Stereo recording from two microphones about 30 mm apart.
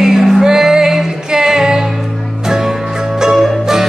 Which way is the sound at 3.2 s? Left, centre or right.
Centre.